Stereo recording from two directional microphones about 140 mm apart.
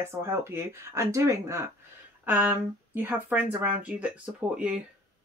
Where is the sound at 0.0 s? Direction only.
20° right (ahead or behind).